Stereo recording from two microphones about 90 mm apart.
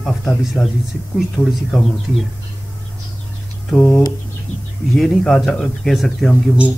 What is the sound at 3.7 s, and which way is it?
Speech, 20° left (ahead or behind).